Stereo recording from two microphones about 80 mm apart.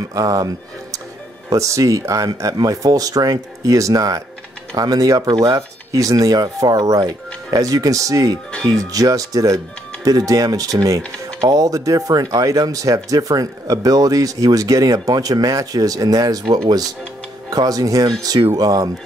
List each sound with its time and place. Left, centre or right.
0.1 s speech: right
1.5 s speech: right
11.0 s speech: centre
11.4 s speech: right